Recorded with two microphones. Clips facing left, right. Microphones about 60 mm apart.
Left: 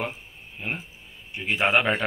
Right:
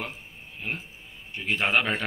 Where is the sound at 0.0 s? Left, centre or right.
Centre.